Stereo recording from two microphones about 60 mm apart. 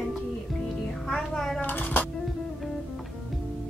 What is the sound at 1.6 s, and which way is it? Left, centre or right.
Music, left.